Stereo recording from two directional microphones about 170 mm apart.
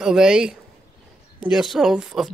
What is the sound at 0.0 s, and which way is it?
Speech, 5° right (ahead or behind).